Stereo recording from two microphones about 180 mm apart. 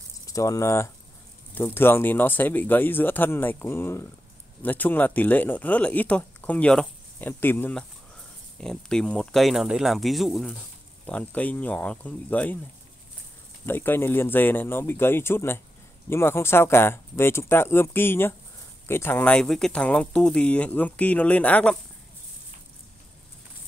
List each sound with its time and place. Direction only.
0.3 s speech: 20° left (ahead or behind)
13.7 s speech: 10° left (ahead or behind)